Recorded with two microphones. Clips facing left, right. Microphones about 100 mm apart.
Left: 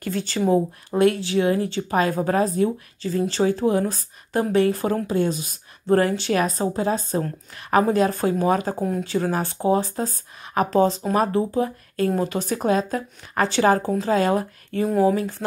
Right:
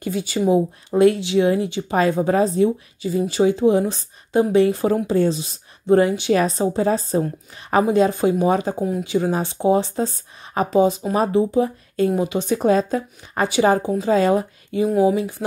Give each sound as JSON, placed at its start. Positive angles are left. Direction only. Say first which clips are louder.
{"t": 0.0, "sound": "speech", "louder": "right 2 dB", "side_deg": -15}
{"t": 3.0, "sound": "speech", "louder": "right 3 dB", "side_deg": -10}
{"t": 6.3, "sound": "speech", "louder": "right 5 dB", "side_deg": -30}
{"t": 7.2, "sound": "speech", "louder": "right 4 dB", "side_deg": -15}
{"t": 10.7, "sound": "speech", "louder": "right 3 dB", "side_deg": -15}
{"t": 14.1, "sound": "speech", "louder": "right 3 dB", "side_deg": -25}
{"t": 14.7, "sound": "speech", "louder": "right 2 dB", "side_deg": -10}